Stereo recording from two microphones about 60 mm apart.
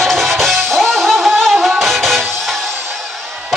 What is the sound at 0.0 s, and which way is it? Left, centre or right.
Music, centre.